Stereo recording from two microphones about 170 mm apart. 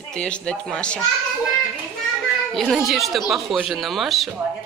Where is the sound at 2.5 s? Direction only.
Centre (ahead or behind).